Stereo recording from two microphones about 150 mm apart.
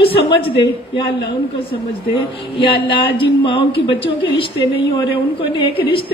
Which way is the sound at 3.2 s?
35° left (ahead or behind).